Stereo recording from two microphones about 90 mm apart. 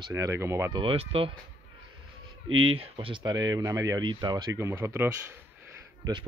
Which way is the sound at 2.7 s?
90° right.